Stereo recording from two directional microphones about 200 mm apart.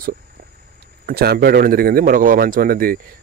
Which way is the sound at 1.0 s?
50° right (ahead or behind).